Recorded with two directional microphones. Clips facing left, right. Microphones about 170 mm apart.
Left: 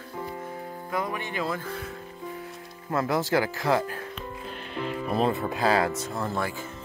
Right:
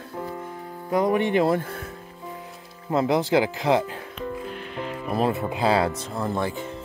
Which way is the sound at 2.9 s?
15° right (ahead or behind).